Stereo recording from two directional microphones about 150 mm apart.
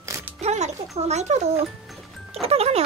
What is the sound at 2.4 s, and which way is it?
Music, 45° right (ahead or behind).